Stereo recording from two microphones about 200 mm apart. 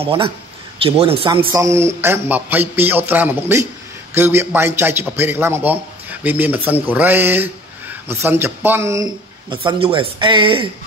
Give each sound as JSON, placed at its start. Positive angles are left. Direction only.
{"t": 0.0, "sound": "speech", "side_deg": -25}
{"t": 1.6, "sound": "a man's voice", "side_deg": -15}